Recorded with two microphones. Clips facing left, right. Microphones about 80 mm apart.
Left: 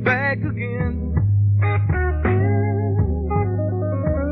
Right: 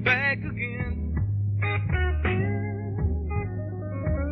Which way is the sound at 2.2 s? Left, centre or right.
Left.